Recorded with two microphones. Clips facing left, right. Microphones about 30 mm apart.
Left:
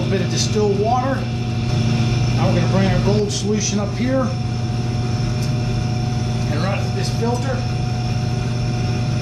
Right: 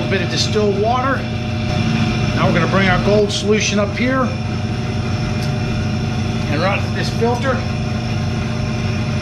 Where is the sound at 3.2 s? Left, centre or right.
Right.